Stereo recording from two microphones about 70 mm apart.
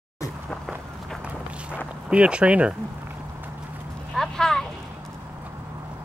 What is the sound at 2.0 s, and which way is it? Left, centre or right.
Speech, centre.